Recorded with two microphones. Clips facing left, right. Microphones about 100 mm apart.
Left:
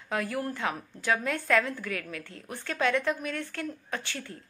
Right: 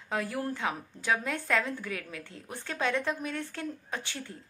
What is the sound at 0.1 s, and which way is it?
A woman's voice, 25° right (ahead or behind).